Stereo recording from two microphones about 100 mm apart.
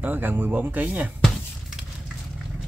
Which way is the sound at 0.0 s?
20° right (ahead or behind).